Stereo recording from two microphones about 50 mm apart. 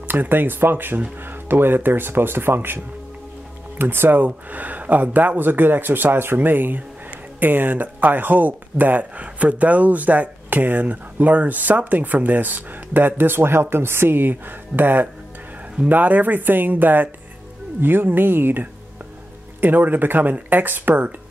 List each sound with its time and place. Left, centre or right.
0.1 s speech: right